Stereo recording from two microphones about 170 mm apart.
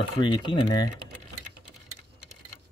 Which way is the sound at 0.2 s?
30° left (ahead or behind).